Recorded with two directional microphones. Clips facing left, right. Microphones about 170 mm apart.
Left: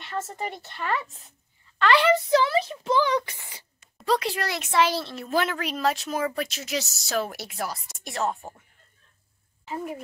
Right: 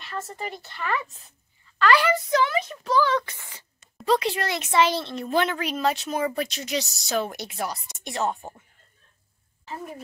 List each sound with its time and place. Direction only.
0.0 s speech: 20° left (ahead or behind)
4.0 s speech: centre (ahead or behind)